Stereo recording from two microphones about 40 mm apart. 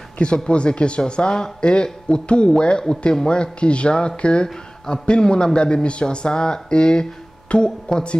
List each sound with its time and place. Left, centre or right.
0.5 s speech: left